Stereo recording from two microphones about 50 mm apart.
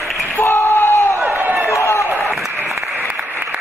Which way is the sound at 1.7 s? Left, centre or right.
Left.